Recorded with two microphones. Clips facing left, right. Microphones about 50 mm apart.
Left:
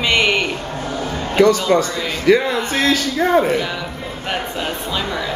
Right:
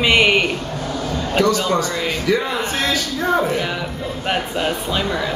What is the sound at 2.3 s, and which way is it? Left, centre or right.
Speech, left.